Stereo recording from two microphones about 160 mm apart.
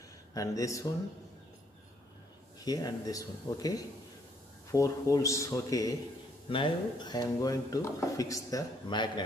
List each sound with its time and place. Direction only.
0.3 s speech: 20° left (ahead or behind)
2.6 s speech: 25° left (ahead or behind)